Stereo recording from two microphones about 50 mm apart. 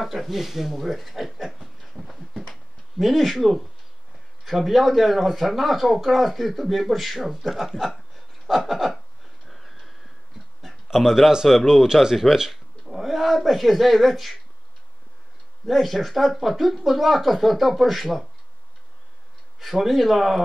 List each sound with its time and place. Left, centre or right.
0.0 s speech: centre
2.0 s a sound: centre
4.5 s speech: centre
8.5 s a sound: centre
10.9 s speech: centre
15.6 s speech: centre
19.6 s speech: centre